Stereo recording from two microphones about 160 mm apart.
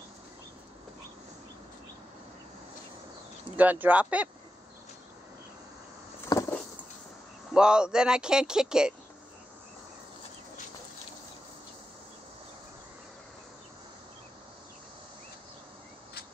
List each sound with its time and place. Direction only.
3.5 s speech: 10° right (ahead or behind)
6.2 s a sound: 20° left (ahead or behind)
7.5 s speech: 5° right (ahead or behind)